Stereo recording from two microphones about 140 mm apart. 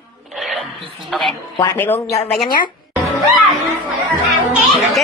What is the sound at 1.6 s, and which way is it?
Speech, 15° left (ahead or behind).